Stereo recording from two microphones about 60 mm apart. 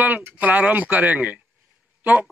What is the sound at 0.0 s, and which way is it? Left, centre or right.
A man's voice, right.